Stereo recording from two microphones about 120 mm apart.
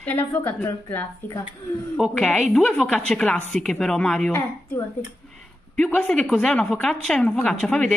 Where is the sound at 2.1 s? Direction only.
5° left (ahead or behind).